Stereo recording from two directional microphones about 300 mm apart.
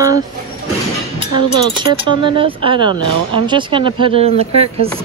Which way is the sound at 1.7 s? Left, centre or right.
Centre.